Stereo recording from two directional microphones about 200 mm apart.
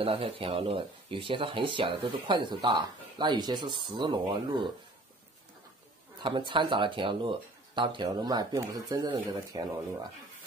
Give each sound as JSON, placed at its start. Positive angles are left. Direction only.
{"t": 0.0, "sound": "speech", "side_deg": -30}
{"t": 6.2, "sound": "speech", "side_deg": -25}